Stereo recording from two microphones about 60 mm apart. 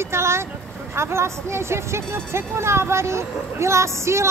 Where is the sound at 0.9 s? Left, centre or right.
Right.